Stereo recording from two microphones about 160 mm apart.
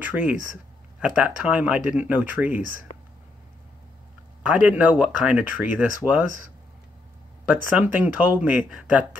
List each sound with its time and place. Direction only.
0.0 s speech: 10° right (ahead or behind)
2.9 s whispering: 35° left (ahead or behind)
4.4 s speech: 10° right (ahead or behind)
7.7 s speech: 10° right (ahead or behind)